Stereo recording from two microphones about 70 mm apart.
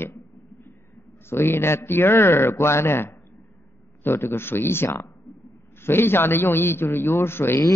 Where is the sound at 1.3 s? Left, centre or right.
Left.